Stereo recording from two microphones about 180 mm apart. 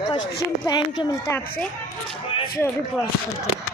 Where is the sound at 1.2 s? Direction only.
10° left (ahead or behind).